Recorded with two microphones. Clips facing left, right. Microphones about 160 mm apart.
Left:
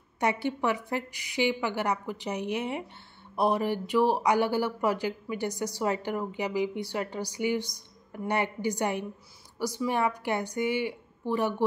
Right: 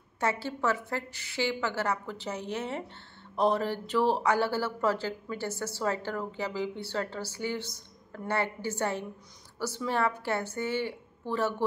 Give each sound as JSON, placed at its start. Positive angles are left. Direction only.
{"t": 0.2, "sound": "speech", "side_deg": 15}